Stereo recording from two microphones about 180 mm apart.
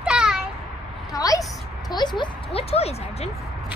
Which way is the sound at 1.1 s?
20° left (ahead or behind).